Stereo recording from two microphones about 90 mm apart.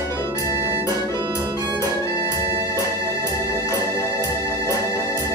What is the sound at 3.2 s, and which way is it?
Organ, 35° left (ahead or behind).